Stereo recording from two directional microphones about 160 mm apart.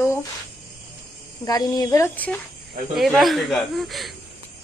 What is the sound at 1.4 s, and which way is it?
Speech, 20° left (ahead or behind).